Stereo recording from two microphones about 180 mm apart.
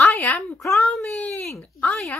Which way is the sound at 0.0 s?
5° left (ahead or behind).